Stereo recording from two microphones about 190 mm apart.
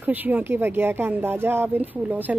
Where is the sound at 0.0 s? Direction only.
10° right (ahead or behind).